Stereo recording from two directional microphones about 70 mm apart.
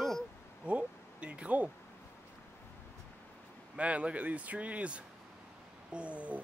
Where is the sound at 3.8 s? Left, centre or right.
Centre.